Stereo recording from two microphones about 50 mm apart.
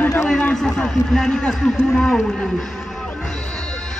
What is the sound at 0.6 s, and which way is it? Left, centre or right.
Speech, centre.